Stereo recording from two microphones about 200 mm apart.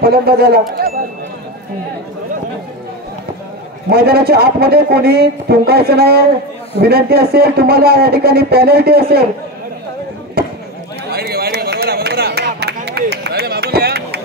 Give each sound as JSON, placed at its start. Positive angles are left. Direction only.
{"t": 0.0, "sound": "speech", "side_deg": -50}
{"t": 3.9, "sound": "a man's voice", "side_deg": -50}
{"t": 10.4, "sound": "a sound", "side_deg": -50}